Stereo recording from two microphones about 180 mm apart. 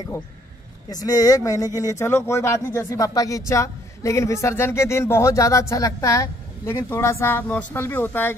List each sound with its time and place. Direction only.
0.8 s speech: 20° left (ahead or behind)